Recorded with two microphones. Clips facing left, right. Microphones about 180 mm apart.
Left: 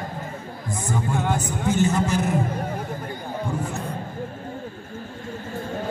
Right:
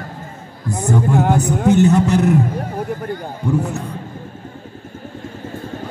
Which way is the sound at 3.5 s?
65° right (ahead or behind).